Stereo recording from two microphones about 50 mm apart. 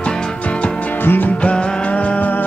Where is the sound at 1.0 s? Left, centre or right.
Left.